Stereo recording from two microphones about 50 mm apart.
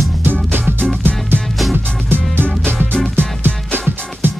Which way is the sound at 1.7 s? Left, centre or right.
Right.